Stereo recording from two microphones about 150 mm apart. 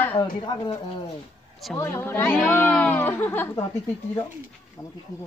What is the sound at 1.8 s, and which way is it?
A woman's voice, 15° left (ahead or behind).